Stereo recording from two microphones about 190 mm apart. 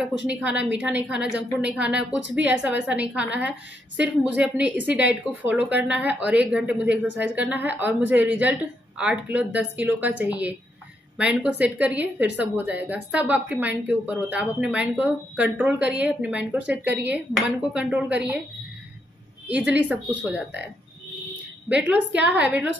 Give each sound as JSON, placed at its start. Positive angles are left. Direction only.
{"t": 0.0, "sound": "a woman's voice", "side_deg": -5}
{"t": 19.4, "sound": "a woman's voice", "side_deg": -5}